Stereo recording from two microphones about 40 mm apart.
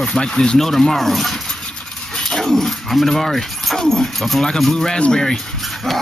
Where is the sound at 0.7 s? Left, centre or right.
Centre.